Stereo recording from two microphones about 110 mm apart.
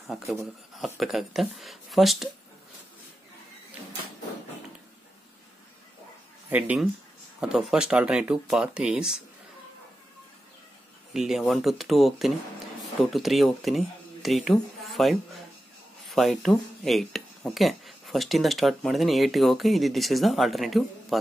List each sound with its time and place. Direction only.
0.0 s speech: centre (ahead or behind)
6.5 s speech: 15° right (ahead or behind)
11.1 s speech: 5° right (ahead or behind)